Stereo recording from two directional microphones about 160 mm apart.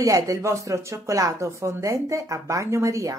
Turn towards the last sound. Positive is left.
turn(degrees=-20)  # may be behind; listen again after turning